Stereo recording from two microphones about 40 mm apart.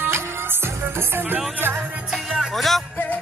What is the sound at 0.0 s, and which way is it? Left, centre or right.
Music, right.